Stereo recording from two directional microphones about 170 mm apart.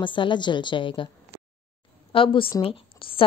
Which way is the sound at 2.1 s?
30° left (ahead or behind).